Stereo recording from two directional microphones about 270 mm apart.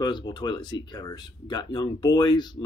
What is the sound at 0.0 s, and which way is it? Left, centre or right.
Speech, centre.